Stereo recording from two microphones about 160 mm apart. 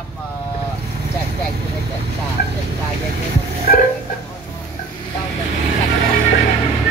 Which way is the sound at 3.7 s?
60° left (ahead or behind).